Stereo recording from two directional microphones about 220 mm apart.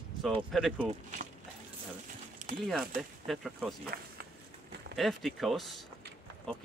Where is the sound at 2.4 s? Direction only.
35° right (ahead or behind).